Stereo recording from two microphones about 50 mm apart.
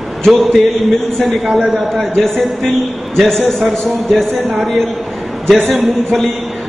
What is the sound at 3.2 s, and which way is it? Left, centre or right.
A man's voice, centre.